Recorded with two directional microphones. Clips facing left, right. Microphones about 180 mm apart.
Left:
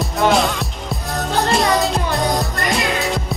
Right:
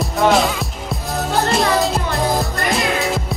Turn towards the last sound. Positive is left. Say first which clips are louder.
# right 1 dB
turn(degrees=0)  # may be behind; listen again after turning